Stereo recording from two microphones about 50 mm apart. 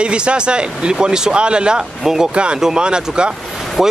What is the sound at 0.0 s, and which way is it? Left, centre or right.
Speech, right.